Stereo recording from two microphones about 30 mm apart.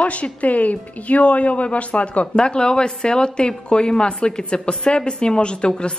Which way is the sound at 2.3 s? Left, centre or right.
Left.